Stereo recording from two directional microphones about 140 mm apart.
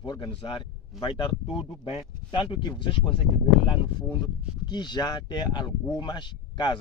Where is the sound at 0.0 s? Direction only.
30° left (ahead or behind).